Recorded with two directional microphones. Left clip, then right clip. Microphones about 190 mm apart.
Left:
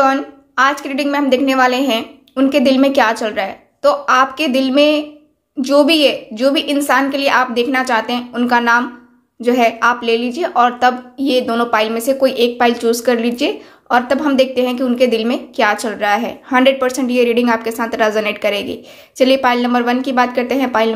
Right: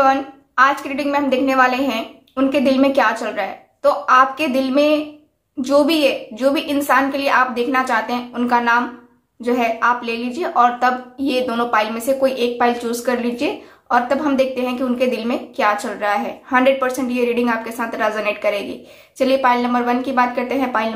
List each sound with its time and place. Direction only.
0.0 s a woman's voice: 25° left (ahead or behind)